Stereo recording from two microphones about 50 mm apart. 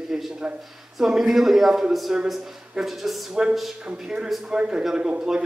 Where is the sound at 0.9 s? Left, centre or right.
Centre.